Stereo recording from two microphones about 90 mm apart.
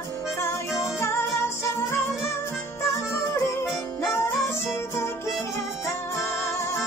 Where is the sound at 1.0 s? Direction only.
30° left (ahead or behind).